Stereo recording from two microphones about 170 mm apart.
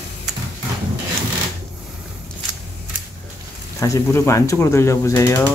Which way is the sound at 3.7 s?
15° left (ahead or behind).